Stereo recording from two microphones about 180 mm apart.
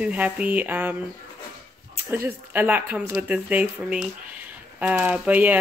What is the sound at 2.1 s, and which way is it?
Speech, 10° right (ahead or behind).